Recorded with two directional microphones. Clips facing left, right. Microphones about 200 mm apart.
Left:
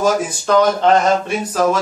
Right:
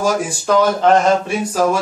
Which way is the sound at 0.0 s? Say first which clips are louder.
Left 1 dB; 10° right (ahead or behind).